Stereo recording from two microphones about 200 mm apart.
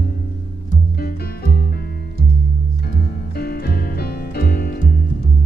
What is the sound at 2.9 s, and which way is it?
Music, 50° left (ahead or behind).